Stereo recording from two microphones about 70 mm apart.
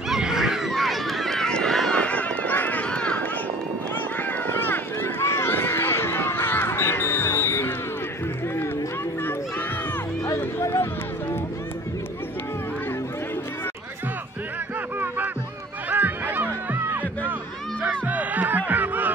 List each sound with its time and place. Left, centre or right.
0.1 s run: centre
2.0 s run: centre
4.2 s run: left
10.2 s a sound: left
15.9 s a sound: right
16.7 s music: right